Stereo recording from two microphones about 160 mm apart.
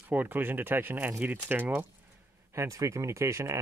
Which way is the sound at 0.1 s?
10° right (ahead or behind).